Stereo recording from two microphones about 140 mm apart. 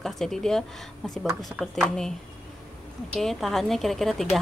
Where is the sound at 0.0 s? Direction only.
5° left (ahead or behind).